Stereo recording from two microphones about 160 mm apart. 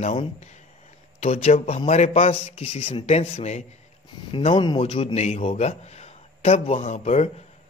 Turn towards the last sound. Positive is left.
turn(degrees=45)  # may be behind; listen again after turning